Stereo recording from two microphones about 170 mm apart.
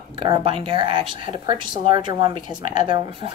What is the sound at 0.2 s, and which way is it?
Speech, 30° right (ahead or behind).